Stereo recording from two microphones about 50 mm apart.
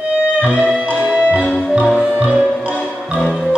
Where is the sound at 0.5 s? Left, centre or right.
Right.